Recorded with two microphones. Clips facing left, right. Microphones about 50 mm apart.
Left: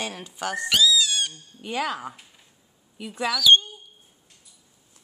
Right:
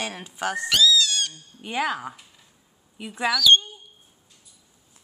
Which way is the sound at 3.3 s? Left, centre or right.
Centre.